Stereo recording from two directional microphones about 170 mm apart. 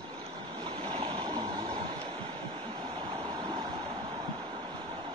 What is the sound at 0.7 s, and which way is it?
Stream, 25° right (ahead or behind).